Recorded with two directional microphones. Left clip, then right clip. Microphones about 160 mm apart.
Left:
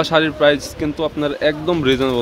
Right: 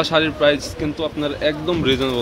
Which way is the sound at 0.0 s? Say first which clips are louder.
Left 2 dB; 25° left (ahead or behind).